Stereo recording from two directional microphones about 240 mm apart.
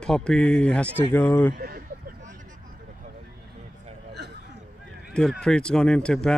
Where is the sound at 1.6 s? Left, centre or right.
Right.